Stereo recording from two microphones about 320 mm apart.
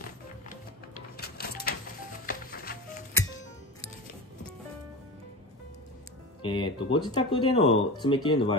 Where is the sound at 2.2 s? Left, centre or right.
Left.